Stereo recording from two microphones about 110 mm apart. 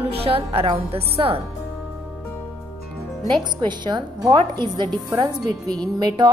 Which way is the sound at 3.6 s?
45° right (ahead or behind).